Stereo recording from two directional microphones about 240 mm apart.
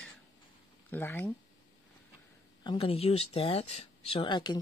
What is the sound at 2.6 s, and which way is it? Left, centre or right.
Speech, left.